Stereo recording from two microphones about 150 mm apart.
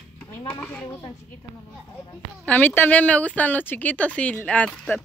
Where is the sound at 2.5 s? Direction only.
10° left (ahead or behind).